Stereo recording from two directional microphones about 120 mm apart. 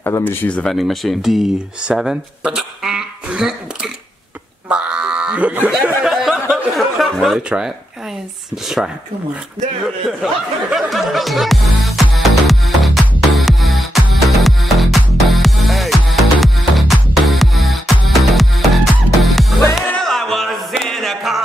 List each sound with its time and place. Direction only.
0.0 s speech: 20° left (ahead or behind)
0.7 s speech: centre (ahead or behind)
4.6 s a sound: 10° right (ahead or behind)
6.5 s chuckle: centre (ahead or behind)
8.6 s speech: 5° right (ahead or behind)
10.2 s music: centre (ahead or behind)
19.9 s music: 5° left (ahead or behind)